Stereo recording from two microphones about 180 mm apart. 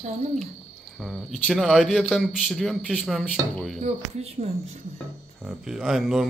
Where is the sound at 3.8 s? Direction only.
40° right (ahead or behind).